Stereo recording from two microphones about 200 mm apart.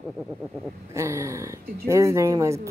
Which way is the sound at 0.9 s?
15° right (ahead or behind).